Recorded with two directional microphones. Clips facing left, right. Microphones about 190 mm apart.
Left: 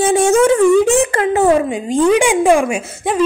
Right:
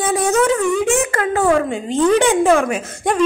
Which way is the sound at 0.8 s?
30° left (ahead or behind).